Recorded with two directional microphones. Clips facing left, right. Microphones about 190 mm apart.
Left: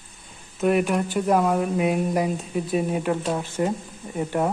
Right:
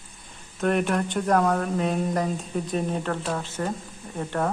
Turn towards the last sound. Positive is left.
turn(degrees=10)  # may be behind; listen again after turning